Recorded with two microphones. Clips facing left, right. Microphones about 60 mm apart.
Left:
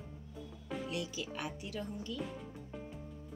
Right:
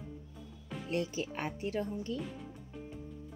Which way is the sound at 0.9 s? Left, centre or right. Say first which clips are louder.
Right 5 dB; right.